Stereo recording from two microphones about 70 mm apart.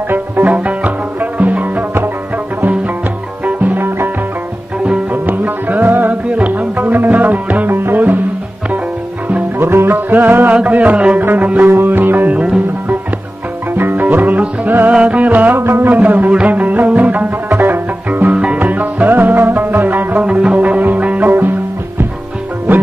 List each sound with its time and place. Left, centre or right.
0.1 s music: right
3.4 s music: right
4.8 s music: centre
9.6 s music: right; by 12.9 s centre
13.7 s music: right
16.0 s music: right
20.2 s music: centre